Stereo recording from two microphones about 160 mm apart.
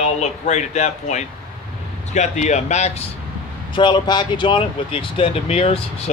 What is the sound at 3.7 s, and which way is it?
Speech, 30° left (ahead or behind).